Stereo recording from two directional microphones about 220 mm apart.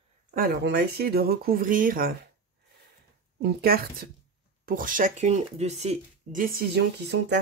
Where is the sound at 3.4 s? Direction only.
45° right (ahead or behind).